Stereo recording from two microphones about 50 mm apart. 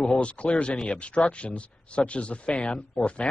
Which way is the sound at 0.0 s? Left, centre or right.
Left.